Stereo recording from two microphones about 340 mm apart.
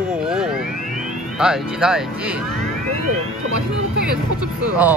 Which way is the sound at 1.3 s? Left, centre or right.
Centre.